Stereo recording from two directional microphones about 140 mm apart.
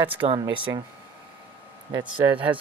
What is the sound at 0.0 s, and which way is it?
Speech, 35° right (ahead or behind).